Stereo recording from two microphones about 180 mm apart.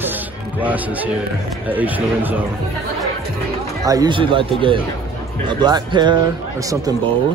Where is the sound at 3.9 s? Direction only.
25° right (ahead or behind).